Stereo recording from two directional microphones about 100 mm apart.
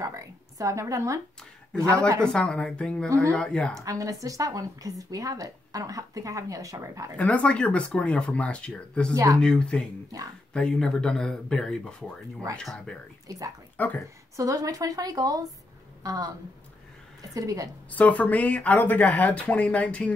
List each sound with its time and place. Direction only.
0.0 s a woman's voice: 35° right (ahead or behind)
2.2 s speech: 10° left (ahead or behind)
3.1 s speech: 30° right (ahead or behind)
3.3 s speech: 10° left (ahead or behind)
3.7 s a woman's voice: 35° right (ahead or behind)
7.2 s speech: 15° left (ahead or behind)
9.1 s a woman's voice: 35° right (ahead or behind)
9.4 s speech: 10° left (ahead or behind)
14.3 s a woman's voice: 35° right (ahead or behind)
17.9 s speech: 15° left (ahead or behind)